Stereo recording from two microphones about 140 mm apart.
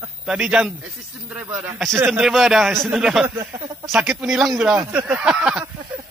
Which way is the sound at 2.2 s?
Centre (ahead or behind).